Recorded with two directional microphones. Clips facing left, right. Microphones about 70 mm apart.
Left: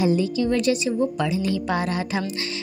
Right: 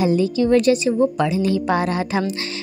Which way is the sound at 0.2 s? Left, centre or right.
Right.